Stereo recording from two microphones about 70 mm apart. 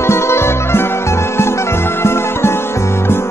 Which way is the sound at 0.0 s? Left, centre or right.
Left.